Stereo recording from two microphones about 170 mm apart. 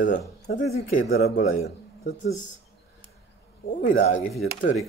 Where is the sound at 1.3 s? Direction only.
45° left (ahead or behind).